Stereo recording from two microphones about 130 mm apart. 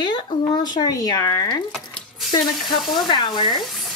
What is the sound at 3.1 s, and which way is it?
Speech, 35° left (ahead or behind).